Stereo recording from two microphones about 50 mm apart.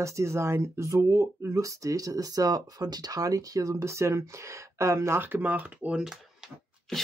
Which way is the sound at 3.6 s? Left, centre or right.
Right.